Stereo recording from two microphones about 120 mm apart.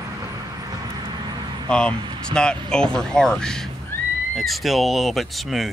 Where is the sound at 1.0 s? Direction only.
35° right (ahead or behind).